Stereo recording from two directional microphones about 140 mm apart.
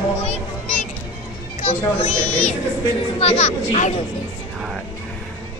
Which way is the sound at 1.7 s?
45° left (ahead or behind).